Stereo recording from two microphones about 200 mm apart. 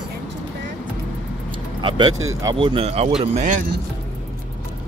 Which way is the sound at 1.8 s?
25° right (ahead or behind).